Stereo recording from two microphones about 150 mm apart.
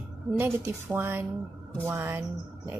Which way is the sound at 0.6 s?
15° right (ahead or behind).